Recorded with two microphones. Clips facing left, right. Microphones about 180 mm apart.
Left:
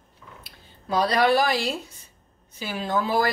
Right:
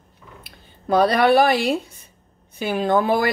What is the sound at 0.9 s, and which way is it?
Speech, 55° right (ahead or behind).